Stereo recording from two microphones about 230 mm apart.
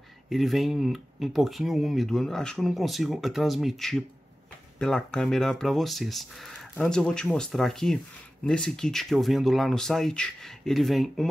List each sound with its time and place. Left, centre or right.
0.3 s speech: centre